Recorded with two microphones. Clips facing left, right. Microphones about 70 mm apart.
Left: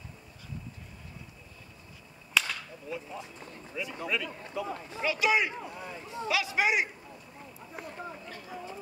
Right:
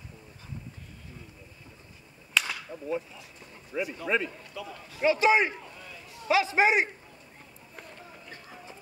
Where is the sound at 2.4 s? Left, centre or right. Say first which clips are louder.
Even; centre.